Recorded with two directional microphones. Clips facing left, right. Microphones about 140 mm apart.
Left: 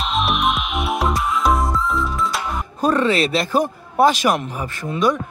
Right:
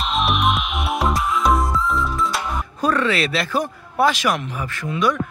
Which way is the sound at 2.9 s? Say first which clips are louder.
Left 3 dB; 35° left (ahead or behind).